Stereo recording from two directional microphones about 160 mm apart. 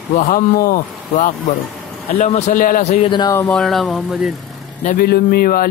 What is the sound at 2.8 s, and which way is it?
Speech, 35° left (ahead or behind).